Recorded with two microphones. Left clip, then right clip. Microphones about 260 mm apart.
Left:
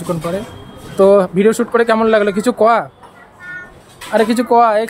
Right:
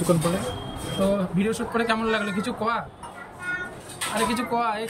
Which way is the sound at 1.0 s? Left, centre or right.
Centre.